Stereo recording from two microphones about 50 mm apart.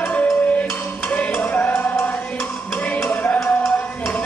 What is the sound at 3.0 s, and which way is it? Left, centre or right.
Music, left.